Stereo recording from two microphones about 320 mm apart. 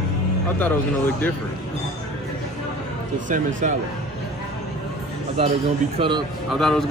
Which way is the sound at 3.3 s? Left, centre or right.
Right.